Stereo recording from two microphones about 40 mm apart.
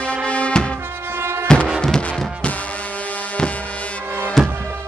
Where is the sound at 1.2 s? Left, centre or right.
Right.